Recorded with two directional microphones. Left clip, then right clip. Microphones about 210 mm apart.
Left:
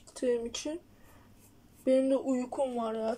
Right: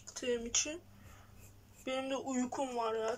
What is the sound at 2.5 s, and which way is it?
Speech, 15° left (ahead or behind).